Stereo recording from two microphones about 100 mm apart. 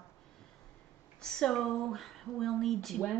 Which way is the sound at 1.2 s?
5° left (ahead or behind).